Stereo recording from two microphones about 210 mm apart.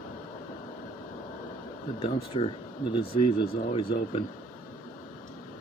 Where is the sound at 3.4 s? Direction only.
45° left (ahead or behind).